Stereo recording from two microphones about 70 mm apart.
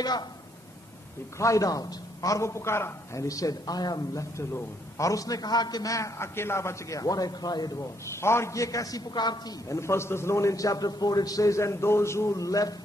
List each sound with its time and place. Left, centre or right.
1.4 s a man's voice: left
7.8 s a man's voice: left
9.1 s a woman's voice: left
9.7 s a man's voice: left